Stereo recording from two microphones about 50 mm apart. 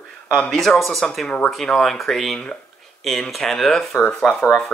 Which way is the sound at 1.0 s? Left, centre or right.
Centre.